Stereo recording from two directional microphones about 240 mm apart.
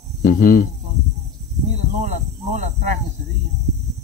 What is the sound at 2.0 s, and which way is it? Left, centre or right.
Speech, right.